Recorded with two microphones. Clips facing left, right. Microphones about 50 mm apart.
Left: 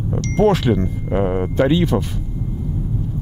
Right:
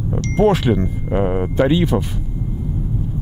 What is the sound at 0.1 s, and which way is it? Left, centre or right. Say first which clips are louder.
Speech: even; centre.